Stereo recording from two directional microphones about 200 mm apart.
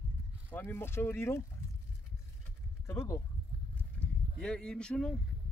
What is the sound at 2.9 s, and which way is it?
Speech, 15° left (ahead or behind).